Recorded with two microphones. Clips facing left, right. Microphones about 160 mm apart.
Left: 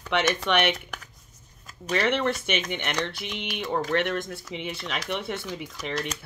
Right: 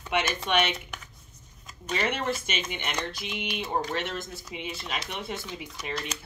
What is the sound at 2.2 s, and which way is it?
Speech, 60° left (ahead or behind).